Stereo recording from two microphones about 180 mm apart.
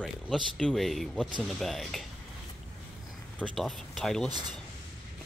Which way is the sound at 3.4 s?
Centre (ahead or behind).